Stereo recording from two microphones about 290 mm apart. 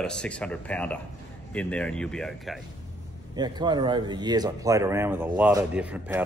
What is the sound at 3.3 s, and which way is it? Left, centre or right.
Speech, centre.